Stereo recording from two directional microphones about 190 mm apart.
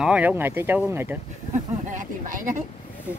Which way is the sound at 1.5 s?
40° right (ahead or behind).